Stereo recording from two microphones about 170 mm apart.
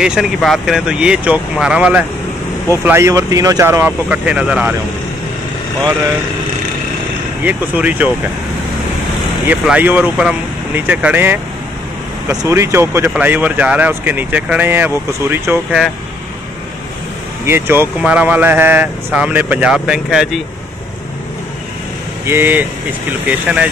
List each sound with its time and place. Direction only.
0.0 s speech: 5° right (ahead or behind)
7.4 s speech: 10° right (ahead or behind)
9.5 s speech: 10° right (ahead or behind)
17.5 s speech: 15° right (ahead or behind)
22.2 s speech: 15° right (ahead or behind)